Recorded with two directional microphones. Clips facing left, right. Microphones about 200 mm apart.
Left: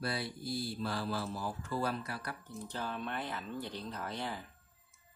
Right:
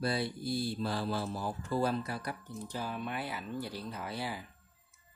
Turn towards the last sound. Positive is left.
turn(degrees=-5)  # may be behind; listen again after turning